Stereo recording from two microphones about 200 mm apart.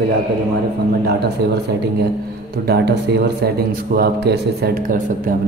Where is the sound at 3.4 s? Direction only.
50° right (ahead or behind).